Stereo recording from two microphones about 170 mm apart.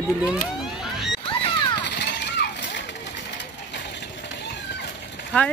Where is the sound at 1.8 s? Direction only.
90° left.